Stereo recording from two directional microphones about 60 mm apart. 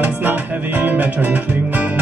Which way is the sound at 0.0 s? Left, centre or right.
Right.